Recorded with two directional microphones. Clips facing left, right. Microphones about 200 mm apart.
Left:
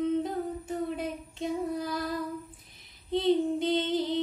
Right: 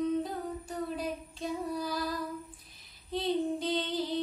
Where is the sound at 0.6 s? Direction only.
25° left (ahead or behind).